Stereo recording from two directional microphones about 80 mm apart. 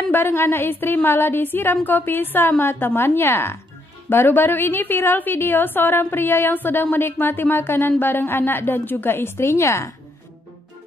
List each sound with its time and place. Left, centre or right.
0.1 s a woman's voice: left